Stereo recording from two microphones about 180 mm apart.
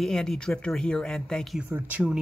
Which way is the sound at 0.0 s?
Centre (ahead or behind).